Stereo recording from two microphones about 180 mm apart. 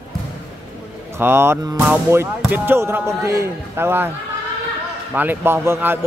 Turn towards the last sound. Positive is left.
turn(degrees=-15)  # may be behind; listen again after turning